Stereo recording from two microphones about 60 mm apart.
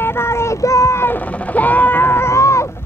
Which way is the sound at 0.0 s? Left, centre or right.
Left.